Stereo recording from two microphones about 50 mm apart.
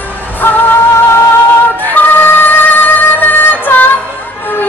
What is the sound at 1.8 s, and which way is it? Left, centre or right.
Music, left.